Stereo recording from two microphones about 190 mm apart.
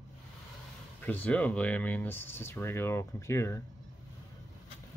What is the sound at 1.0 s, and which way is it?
Speech, 10° left (ahead or behind).